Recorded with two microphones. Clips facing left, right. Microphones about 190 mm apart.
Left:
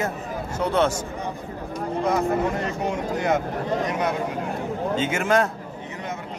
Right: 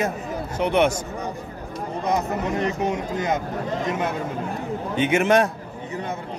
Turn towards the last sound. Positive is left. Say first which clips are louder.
# right 3 dB
turn(degrees=-20)  # may be behind; listen again after turning